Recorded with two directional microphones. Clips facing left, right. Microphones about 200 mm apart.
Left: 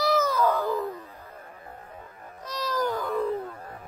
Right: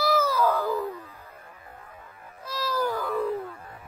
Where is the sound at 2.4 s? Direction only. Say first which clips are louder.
Even; 10° right (ahead or behind).